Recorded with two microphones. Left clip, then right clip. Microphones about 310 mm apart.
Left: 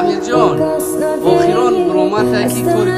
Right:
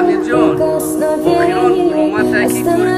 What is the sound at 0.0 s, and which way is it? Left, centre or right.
Music, centre.